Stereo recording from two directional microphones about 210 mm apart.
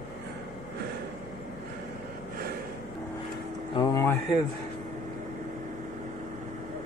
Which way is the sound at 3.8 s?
15° left (ahead or behind).